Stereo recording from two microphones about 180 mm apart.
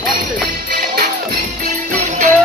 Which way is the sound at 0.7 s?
55° right (ahead or behind).